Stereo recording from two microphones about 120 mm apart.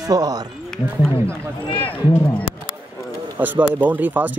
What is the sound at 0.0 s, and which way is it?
Speech, 30° right (ahead or behind).